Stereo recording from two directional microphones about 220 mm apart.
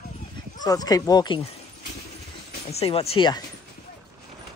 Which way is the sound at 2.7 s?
25° left (ahead or behind).